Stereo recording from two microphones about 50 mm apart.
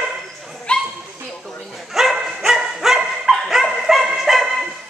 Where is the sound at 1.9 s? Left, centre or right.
Centre.